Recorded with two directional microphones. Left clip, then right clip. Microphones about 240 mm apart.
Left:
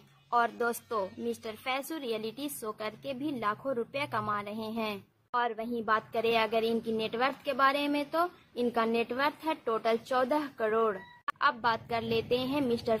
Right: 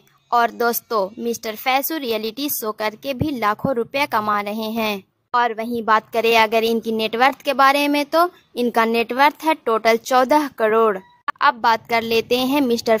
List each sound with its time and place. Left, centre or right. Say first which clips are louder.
0.3 s a woman's voice: right 11 dB; right